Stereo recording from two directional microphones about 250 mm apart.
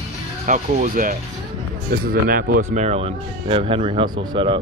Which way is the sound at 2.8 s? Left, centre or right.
Right.